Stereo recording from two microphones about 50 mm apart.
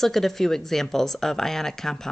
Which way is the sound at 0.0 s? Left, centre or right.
Centre.